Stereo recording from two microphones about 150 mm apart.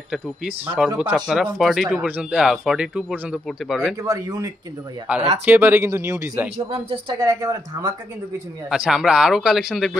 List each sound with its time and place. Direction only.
0.7 s speech: 10° right (ahead or behind)
4.0 s speech: 20° right (ahead or behind)
8.6 s speech: 5° right (ahead or behind)